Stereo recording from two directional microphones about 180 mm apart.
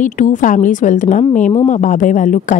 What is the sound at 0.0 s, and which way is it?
Speech, 45° left (ahead or behind).